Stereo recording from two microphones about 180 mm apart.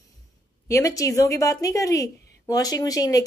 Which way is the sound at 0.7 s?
15° left (ahead or behind).